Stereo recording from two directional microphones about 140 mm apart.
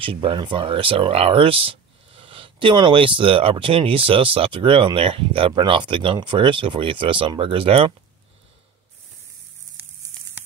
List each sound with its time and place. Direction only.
0.0 s speech: 40° right (ahead or behind)